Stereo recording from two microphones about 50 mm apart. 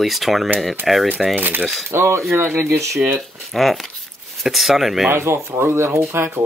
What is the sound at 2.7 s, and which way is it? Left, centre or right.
Speech, right.